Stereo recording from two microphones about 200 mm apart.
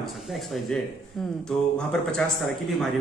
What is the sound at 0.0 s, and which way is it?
Speech, centre (ahead or behind).